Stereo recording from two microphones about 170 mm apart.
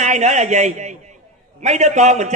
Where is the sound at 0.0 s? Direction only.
45° right (ahead or behind).